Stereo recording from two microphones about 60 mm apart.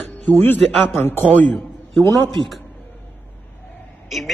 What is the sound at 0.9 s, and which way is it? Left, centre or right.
Speech, left.